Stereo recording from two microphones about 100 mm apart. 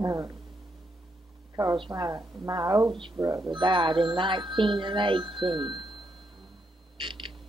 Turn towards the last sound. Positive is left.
turn(degrees=-55)  # may be behind; listen again after turning